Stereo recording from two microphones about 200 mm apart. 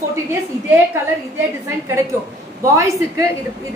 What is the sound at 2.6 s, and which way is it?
Speech, 15° right (ahead or behind).